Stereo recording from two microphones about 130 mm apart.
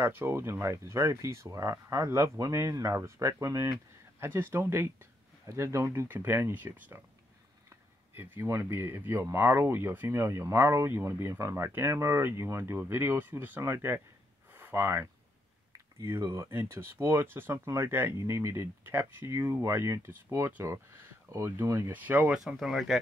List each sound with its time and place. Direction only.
0.0 s speech: 15° right (ahead or behind)
14.5 s a sound: 15° right (ahead or behind)
16.0 s speech: 20° right (ahead or behind); by 22.9 s centre (ahead or behind)